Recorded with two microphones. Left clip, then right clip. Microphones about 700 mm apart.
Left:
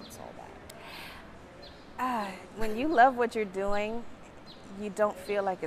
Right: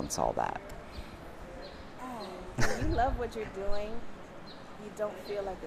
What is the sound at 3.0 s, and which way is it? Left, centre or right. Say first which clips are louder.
Speech: left 11 dB; left.